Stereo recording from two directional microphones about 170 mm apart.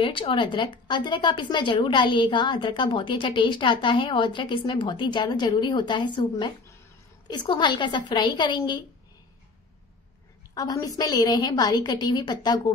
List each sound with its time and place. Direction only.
0.0 s speech: 30° left (ahead or behind)
10.5 s speech: 20° left (ahead or behind)